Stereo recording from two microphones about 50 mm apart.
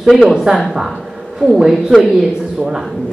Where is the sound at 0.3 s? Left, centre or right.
Centre.